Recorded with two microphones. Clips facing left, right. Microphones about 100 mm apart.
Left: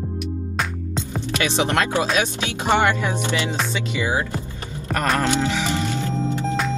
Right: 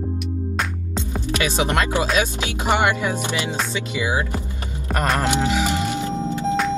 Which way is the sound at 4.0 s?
15° right (ahead or behind).